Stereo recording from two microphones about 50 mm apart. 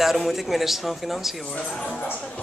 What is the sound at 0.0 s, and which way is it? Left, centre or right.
Speech, centre.